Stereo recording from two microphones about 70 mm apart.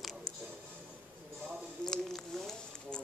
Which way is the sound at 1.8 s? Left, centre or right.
Centre.